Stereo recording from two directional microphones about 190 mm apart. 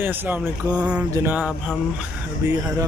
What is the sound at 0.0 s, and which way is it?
Speech, 10° right (ahead or behind).